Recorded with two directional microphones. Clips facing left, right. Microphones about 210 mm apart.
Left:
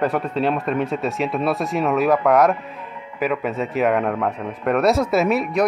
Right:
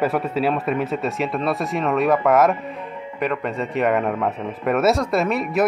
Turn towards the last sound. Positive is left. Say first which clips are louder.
# left 2 dB
turn(degrees=0)  # may be behind; listen again after turning